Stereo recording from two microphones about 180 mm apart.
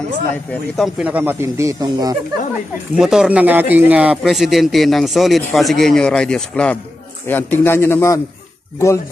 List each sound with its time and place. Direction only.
0.5 s speech: centre (ahead or behind); by 2.1 s 20° right (ahead or behind)
3.0 s a man's voice: 5° right (ahead or behind); by 9.0 s 15° left (ahead or behind)